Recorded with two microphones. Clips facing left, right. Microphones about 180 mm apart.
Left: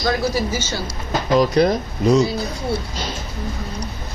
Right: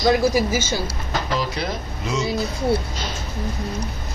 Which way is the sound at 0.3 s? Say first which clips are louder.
Right 2 dB; 10° right (ahead or behind).